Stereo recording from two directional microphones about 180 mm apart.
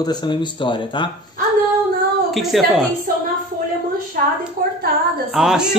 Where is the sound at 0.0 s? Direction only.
25° left (ahead or behind).